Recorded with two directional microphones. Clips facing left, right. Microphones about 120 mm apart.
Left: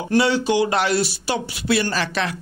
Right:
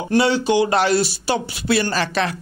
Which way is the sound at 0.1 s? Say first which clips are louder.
Right 1 dB; 25° right (ahead or behind).